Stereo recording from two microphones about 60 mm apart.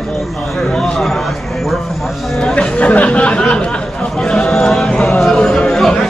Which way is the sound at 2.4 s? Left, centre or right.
Centre.